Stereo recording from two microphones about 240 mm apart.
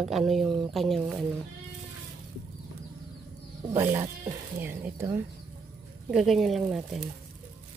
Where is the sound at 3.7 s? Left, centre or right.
Centre.